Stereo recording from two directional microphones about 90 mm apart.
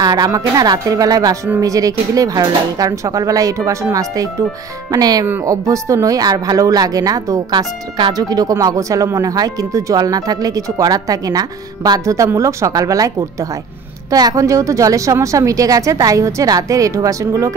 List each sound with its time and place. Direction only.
0.0 s speech: 45° right (ahead or behind)